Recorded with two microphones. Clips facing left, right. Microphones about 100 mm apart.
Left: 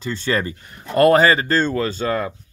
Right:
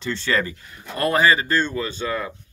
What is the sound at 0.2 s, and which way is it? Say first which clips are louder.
Speech: left 2 dB; 35° left (ahead or behind).